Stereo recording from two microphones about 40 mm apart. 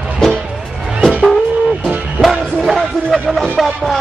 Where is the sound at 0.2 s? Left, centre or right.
Centre.